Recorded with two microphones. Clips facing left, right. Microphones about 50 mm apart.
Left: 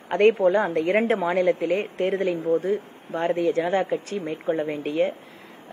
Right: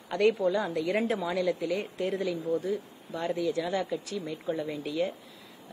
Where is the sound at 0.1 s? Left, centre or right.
Left.